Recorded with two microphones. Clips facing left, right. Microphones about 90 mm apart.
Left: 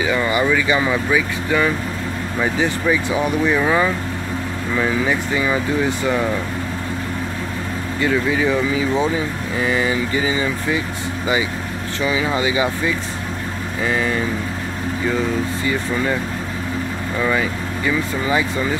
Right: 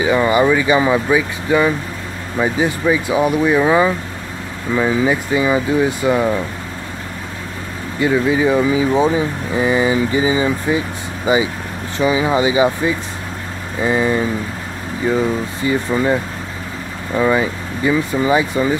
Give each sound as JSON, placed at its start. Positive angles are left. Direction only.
{"t": 0.0, "sound": "speech", "side_deg": -25}
{"t": 8.0, "sound": "speech", "side_deg": -20}
{"t": 15.6, "sound": "speech", "side_deg": -20}
{"t": 17.2, "sound": "speech", "side_deg": -20}